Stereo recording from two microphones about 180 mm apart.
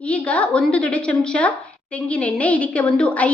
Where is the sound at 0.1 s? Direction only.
5° left (ahead or behind).